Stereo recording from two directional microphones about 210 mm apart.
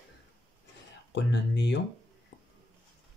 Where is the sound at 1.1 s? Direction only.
55° left (ahead or behind).